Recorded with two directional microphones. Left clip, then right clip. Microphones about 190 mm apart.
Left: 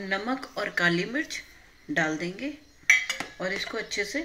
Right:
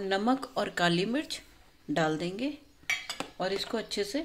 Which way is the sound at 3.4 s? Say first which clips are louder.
Right 2 dB; 75° right (ahead or behind).